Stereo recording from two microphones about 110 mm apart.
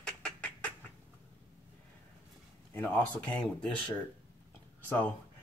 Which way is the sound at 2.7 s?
10° left (ahead or behind).